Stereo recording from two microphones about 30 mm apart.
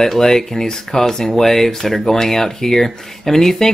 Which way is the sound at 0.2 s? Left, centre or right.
Centre.